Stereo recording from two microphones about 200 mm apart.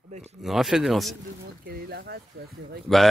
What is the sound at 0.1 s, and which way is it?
Speech, 35° right (ahead or behind).